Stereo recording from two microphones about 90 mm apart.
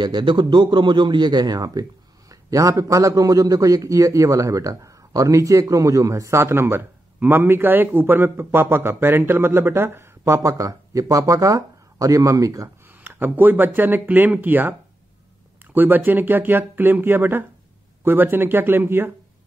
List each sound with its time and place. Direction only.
0.0 s speech: 60° right (ahead or behind); by 12.7 s 35° right (ahead or behind)
12.8 s speech: 25° right (ahead or behind)